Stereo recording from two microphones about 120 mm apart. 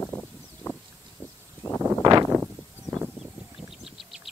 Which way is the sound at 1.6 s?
35° left (ahead or behind).